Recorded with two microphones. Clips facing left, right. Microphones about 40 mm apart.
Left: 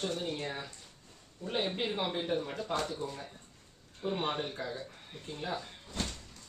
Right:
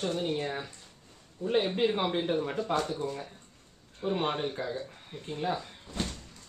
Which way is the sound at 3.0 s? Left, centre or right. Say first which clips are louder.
Right 5 dB; centre.